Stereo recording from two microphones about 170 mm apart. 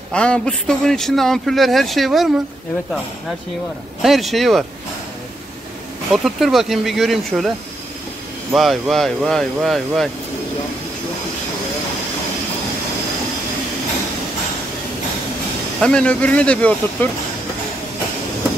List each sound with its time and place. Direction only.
0.1 s a man's voice: 5° left (ahead or behind)
4.0 s a man's voice: centre (ahead or behind)
6.1 s a man's voice: centre (ahead or behind)
8.5 s a man's voice: centre (ahead or behind)
15.8 s speech: 5° left (ahead or behind)